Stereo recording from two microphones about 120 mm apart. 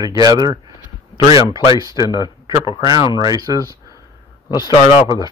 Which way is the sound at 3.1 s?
30° right (ahead or behind).